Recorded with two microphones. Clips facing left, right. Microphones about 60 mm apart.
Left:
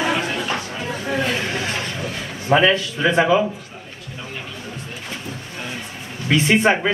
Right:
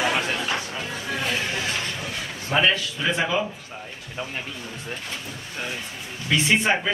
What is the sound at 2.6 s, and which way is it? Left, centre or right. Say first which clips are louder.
Speech: left 5 dB; left.